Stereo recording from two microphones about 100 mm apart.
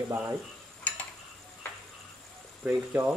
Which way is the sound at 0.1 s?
20° right (ahead or behind).